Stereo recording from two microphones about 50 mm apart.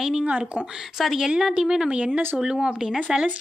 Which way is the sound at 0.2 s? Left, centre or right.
Right.